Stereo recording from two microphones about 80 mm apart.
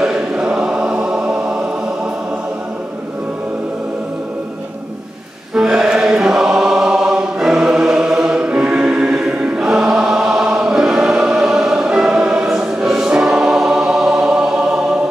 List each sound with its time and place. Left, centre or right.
0.0 s choir: centre
5.5 s choir: centre